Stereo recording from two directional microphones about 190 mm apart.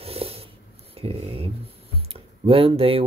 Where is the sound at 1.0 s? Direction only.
30° right (ahead or behind).